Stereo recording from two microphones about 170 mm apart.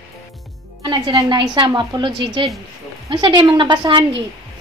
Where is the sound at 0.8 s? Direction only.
25° right (ahead or behind).